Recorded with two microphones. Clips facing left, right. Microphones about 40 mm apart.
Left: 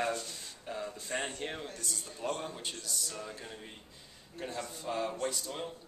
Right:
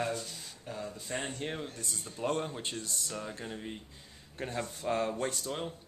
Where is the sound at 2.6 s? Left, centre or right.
Right.